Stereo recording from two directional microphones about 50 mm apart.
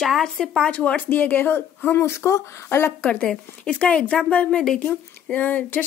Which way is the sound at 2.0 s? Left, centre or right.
Left.